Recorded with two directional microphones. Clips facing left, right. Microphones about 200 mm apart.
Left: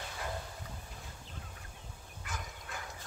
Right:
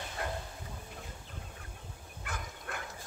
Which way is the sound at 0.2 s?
60° right (ahead or behind).